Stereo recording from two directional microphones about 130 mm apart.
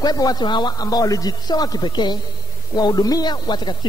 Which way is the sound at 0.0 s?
30° left (ahead or behind).